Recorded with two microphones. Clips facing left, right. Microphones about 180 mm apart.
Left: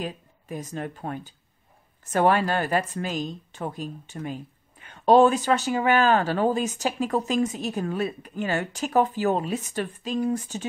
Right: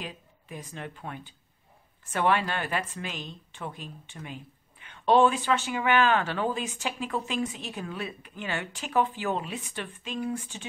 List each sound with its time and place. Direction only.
0.0 s speech: 45° left (ahead or behind)